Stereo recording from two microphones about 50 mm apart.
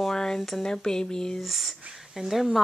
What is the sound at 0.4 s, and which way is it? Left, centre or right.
Speech, centre.